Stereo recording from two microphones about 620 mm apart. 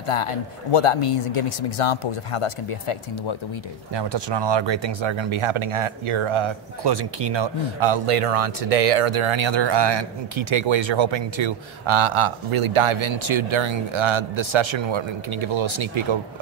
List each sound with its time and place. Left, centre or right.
0.0 s speech: left
3.9 s speech: right